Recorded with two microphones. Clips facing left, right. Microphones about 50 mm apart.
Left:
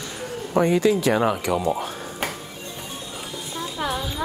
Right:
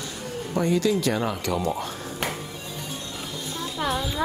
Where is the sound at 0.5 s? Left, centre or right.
Left.